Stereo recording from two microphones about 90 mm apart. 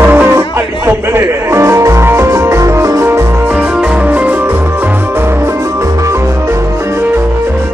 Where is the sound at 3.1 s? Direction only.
25° right (ahead or behind).